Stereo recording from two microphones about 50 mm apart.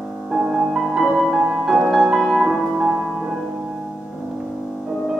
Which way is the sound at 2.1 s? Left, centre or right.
Centre.